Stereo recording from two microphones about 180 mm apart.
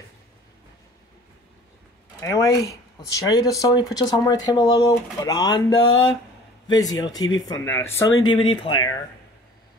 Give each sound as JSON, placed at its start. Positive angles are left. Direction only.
{"t": 2.1, "sound": "speech", "side_deg": 15}
{"t": 8.3, "sound": "speech", "side_deg": 30}